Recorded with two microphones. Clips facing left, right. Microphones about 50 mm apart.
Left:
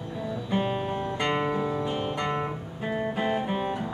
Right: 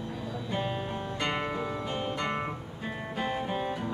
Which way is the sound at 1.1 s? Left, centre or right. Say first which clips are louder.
Left 4 dB; centre.